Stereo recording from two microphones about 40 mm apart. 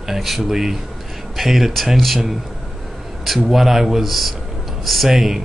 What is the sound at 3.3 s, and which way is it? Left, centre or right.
A man's voice, centre.